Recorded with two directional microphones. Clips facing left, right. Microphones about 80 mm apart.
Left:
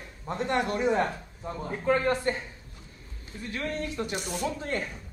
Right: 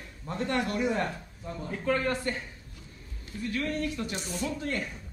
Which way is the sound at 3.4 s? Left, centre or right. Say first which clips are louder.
Right 2 dB; left.